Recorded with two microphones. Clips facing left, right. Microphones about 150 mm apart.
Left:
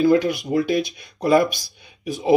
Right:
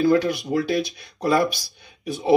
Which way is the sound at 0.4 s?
20° left (ahead or behind).